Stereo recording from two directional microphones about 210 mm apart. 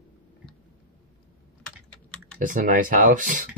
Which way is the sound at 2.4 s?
40° right (ahead or behind).